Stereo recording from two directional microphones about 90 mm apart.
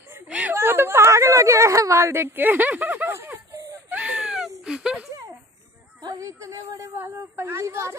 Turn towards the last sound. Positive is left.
turn(degrees=-30)  # may be behind; listen again after turning